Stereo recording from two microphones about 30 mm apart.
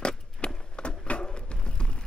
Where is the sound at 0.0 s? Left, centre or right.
Left.